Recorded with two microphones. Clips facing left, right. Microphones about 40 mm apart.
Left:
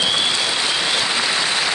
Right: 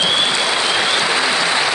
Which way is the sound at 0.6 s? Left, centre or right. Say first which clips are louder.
Right 3 dB; right.